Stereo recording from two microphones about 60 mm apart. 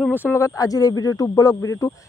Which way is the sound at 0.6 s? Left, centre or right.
Left.